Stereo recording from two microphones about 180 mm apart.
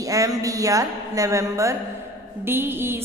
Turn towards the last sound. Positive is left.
turn(degrees=-15)  # may be behind; listen again after turning